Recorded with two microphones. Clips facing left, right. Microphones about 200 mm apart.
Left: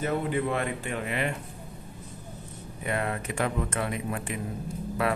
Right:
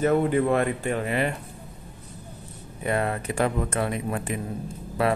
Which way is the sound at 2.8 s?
35° right (ahead or behind).